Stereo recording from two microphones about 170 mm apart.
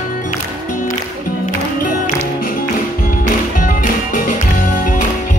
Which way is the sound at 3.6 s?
50° left (ahead or behind).